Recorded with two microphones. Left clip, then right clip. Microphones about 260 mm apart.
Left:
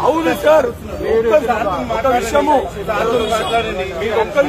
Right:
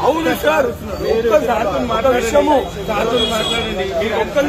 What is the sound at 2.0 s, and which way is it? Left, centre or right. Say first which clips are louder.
Speech: even; centre.